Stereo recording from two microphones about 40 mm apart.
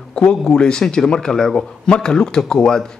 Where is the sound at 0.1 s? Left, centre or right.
Centre.